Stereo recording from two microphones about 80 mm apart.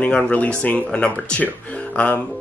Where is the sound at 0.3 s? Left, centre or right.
Centre.